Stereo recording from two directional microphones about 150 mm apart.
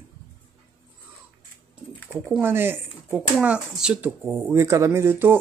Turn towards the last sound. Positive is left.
turn(degrees=-15)  # may be behind; listen again after turning